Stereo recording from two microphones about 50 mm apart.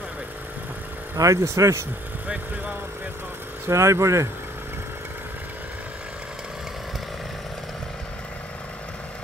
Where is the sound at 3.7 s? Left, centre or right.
Right.